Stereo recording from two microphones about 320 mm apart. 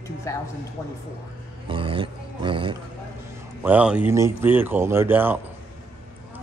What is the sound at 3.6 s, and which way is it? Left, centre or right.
Speech, centre.